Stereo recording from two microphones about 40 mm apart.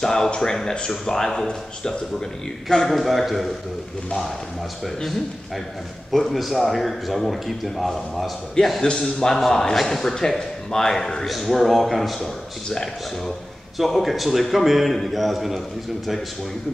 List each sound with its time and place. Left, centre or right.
0.0 s a man's voice: centre
3.0 s a man's voice: centre
4.8 s a man's voice: centre
8.6 s a man's voice: centre
11.2 s a man's voice: centre
12.6 s a man's voice: centre
13.7 s a man's voice: centre